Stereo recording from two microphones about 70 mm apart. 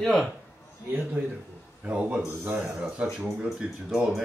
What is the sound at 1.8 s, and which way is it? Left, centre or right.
Speech, centre.